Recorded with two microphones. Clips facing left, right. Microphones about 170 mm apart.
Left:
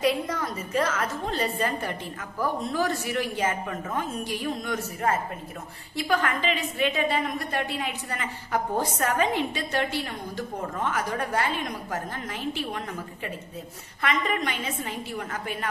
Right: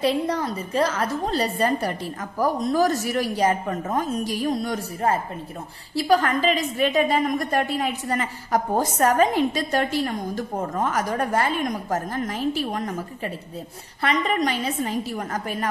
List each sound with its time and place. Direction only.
0.0 s a woman's voice: 30° right (ahead or behind)